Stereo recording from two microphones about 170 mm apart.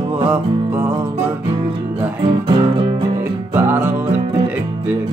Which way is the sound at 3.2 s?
15° right (ahead or behind).